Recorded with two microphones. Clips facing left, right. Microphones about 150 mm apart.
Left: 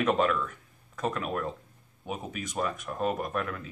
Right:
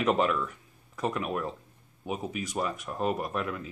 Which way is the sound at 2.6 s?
20° right (ahead or behind).